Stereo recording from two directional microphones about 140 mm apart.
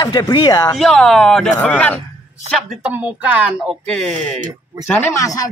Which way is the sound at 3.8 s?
5° left (ahead or behind).